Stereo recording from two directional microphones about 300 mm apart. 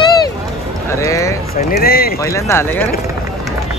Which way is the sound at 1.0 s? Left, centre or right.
Centre.